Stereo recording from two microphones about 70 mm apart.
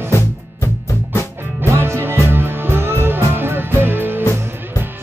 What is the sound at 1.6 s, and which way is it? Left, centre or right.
Music, right.